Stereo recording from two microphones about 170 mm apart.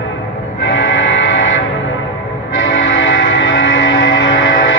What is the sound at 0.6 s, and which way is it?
Music, 90° left.